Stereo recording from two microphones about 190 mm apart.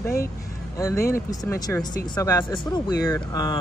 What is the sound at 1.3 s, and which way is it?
Speech, 20° left (ahead or behind).